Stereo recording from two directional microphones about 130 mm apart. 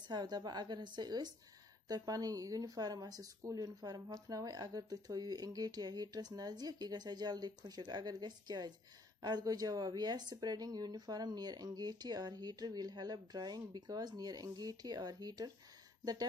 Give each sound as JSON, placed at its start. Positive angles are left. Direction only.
{"t": 0.1, "sound": "speech", "side_deg": -30}